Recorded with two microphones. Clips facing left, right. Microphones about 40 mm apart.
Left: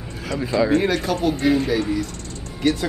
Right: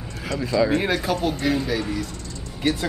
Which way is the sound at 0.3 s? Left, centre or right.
Left.